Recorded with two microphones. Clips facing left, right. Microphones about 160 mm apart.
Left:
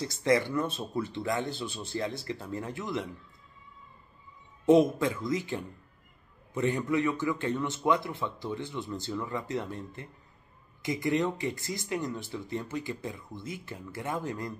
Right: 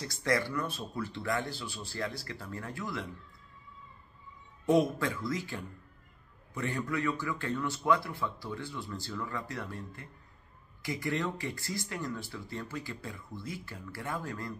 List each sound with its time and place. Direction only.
0.0 s speech: 20° left (ahead or behind)
4.6 s speech: 20° left (ahead or behind)